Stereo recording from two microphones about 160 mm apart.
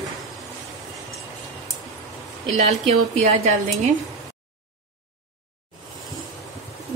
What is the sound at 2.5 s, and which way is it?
Speech, 45° right (ahead or behind).